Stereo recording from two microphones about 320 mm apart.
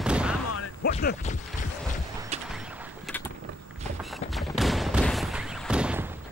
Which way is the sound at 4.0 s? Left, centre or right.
Centre.